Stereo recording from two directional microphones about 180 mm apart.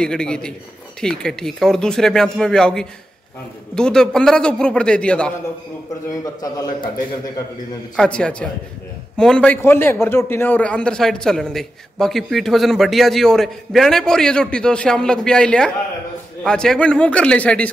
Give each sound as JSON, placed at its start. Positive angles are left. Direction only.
{"t": 0.0, "sound": "a man's voice", "side_deg": 5}
{"t": 6.4, "sound": "a man's voice", "side_deg": 20}
{"t": 7.9, "sound": "a man's voice", "side_deg": 5}